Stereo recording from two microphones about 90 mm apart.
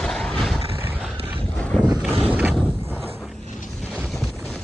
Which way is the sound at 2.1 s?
15° right (ahead or behind).